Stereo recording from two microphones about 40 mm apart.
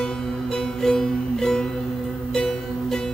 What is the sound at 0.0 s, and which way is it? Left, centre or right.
Music, centre.